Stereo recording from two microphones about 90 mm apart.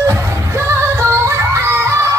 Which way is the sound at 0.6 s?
30° right (ahead or behind).